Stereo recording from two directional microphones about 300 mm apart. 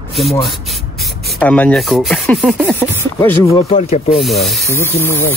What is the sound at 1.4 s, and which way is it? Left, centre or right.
Speech, centre.